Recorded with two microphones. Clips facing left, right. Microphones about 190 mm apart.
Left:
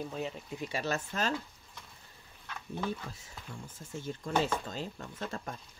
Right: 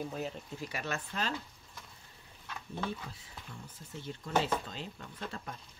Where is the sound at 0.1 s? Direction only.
Centre (ahead or behind).